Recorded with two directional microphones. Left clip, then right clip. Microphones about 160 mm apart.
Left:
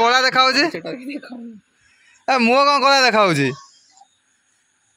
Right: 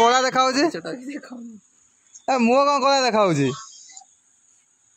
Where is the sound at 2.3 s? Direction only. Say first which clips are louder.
Left 3 dB; 10° right (ahead or behind).